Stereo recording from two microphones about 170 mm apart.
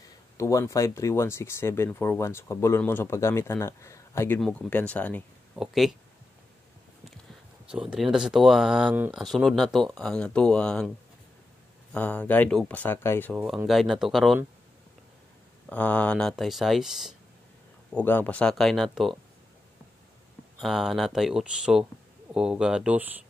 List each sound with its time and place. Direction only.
0.4 s speech: 15° left (ahead or behind)
5.6 s speech: centre (ahead or behind)
7.7 s speech: 5° right (ahead or behind)
11.9 s speech: 10° left (ahead or behind)
13.7 s speech: centre (ahead or behind)
15.7 s speech: 10° left (ahead or behind)
17.9 s speech: 10° left (ahead or behind)
20.6 s speech: centre (ahead or behind)